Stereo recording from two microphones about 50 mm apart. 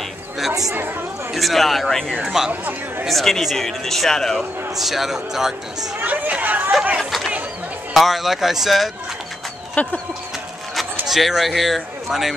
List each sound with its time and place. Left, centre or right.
0.5 s speech: right
1.3 s speech: centre
2.2 s speech: centre
3.1 s speech: centre
4.4 s speech: centre
6.0 s speech: right
7.1 s chatter: centre
7.9 s speech: centre
9.8 s speech: left
11.1 s speech: centre